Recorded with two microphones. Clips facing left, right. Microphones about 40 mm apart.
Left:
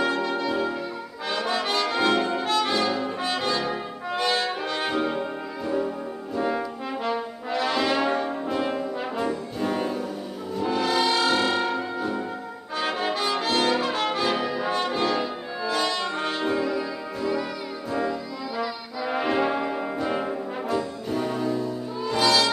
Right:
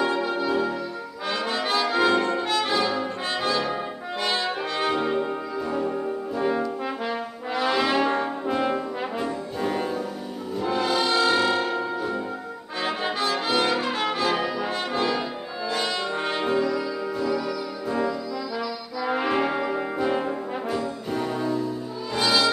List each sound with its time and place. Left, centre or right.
0.0 s music: centre
1.3 s brass instrument: centre
4.8 s music: centre
6.3 s brass instrument: centre
10.6 s music: centre
12.8 s brass instrument: centre
16.6 s music: centre
19.0 s brass instrument: centre